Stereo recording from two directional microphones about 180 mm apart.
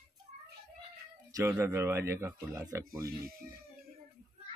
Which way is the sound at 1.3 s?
15° right (ahead or behind).